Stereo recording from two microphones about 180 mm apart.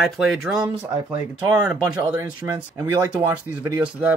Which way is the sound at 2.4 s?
20° right (ahead or behind).